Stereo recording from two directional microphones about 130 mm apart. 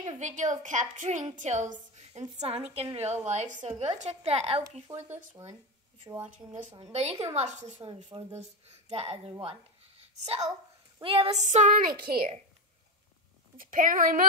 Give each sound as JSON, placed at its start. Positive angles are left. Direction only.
{"t": 0.2, "sound": "a woman's voice", "side_deg": -70}
{"t": 2.3, "sound": "a woman's voice", "side_deg": -50}
{"t": 3.3, "sound": "a woman's voice", "side_deg": -70}
{"t": 4.9, "sound": "speech", "side_deg": -15}
{"t": 6.8, "sound": "a woman's voice", "side_deg": -55}
{"t": 9.4, "sound": "a sound", "side_deg": -50}
{"t": 11.0, "sound": "a woman's voice", "side_deg": -45}
{"t": 11.3, "sound": "a woman's voice", "side_deg": -65}
{"t": 12.1, "sound": "speech", "side_deg": -10}
{"t": 13.6, "sound": "a woman's voice", "side_deg": -90}